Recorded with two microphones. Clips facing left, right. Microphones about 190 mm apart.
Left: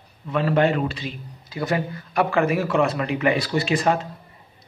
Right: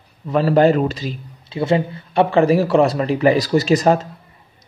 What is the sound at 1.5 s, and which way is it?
A man's voice, 25° right (ahead or behind).